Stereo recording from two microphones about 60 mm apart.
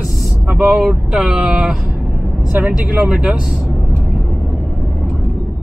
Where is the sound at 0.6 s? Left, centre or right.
Centre.